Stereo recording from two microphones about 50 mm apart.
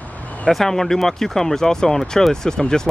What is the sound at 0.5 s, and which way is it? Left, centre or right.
Speech, centre.